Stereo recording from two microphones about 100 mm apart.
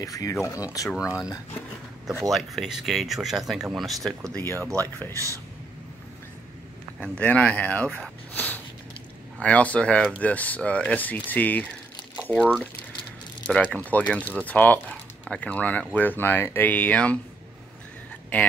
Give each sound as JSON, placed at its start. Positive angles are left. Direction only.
{"t": 0.0, "sound": "speech", "side_deg": 35}
{"t": 0.9, "sound": "speech", "side_deg": -5}
{"t": 2.3, "sound": "speech", "side_deg": 0}
{"t": 4.6, "sound": "speech", "side_deg": -30}
{"t": 7.0, "sound": "speech", "side_deg": 15}
{"t": 8.3, "sound": "a sound", "side_deg": 15}
{"t": 9.4, "sound": "speech", "side_deg": 15}
{"t": 12.2, "sound": "pour", "side_deg": 10}
{"t": 13.5, "sound": "speech", "side_deg": 10}